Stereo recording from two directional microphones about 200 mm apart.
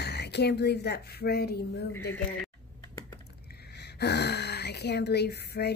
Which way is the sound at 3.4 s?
55° left (ahead or behind).